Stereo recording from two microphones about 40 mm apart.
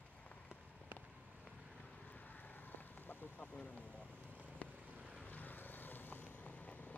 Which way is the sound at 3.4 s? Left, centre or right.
Left.